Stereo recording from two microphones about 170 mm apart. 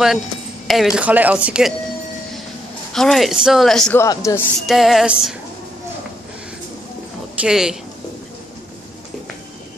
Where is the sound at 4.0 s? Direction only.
20° left (ahead or behind).